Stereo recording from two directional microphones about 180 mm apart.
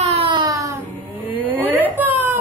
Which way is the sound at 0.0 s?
35° right (ahead or behind).